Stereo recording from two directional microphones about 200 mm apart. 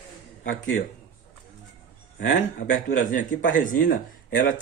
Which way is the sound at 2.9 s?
40° left (ahead or behind).